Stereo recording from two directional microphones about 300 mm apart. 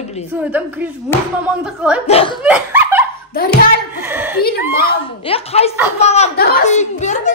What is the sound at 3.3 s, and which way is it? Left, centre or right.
Speech, left.